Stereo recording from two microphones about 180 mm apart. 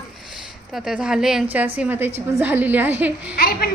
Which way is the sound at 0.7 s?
5° right (ahead or behind).